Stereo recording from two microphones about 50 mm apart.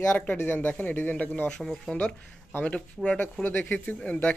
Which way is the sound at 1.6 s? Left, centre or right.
Centre.